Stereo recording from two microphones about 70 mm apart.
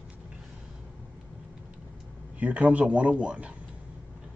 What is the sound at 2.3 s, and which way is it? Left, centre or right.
Speech, right.